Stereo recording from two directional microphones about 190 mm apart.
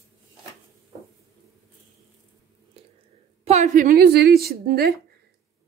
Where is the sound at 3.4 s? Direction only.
35° right (ahead or behind).